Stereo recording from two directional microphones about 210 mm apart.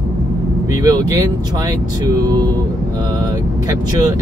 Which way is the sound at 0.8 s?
15° right (ahead or behind).